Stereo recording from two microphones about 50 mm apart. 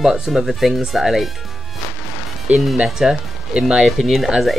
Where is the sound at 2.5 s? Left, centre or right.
Centre.